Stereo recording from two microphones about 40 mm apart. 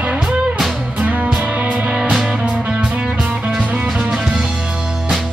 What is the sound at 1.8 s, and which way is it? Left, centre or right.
Music, right.